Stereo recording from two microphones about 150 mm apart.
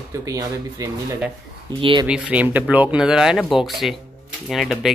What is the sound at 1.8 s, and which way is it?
Speech, 35° right (ahead or behind).